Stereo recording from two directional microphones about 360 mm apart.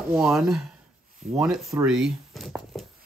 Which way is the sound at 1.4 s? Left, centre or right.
Centre.